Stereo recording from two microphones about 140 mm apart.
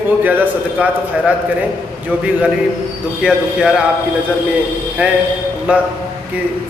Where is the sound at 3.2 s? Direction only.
5° right (ahead or behind).